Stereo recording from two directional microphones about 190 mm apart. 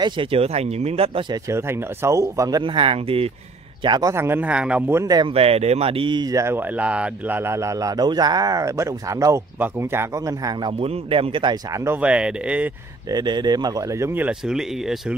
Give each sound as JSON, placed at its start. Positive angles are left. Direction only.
{"t": 0.0, "sound": "speech", "side_deg": -30}
{"t": 1.5, "sound": "speech", "side_deg": -15}
{"t": 10.8, "sound": "speech", "side_deg": -30}
{"t": 13.1, "sound": "speech", "side_deg": -25}